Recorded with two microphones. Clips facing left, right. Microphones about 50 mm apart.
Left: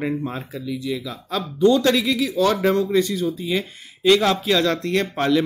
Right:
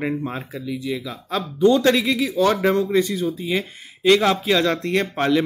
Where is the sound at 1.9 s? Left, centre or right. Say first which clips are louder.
Right 1 dB; centre.